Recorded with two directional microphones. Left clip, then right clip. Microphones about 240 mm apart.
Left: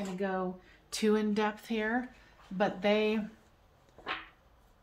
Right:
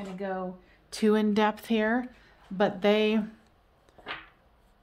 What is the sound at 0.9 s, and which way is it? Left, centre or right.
A woman's voice, right.